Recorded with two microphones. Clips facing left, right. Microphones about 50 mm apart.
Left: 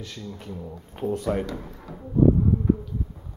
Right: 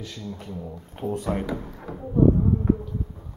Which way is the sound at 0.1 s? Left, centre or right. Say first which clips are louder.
Right 1 dB; centre.